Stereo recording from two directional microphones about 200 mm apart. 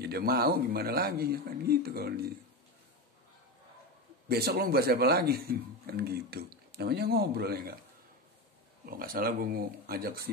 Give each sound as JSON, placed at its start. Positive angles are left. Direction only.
{"t": 0.0, "sound": "a man's voice", "side_deg": -50}
{"t": 4.3, "sound": "a man's voice", "side_deg": -50}
{"t": 8.8, "sound": "a man's voice", "side_deg": -45}